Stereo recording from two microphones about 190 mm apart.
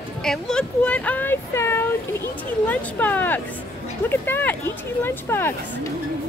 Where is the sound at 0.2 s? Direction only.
5° left (ahead or behind).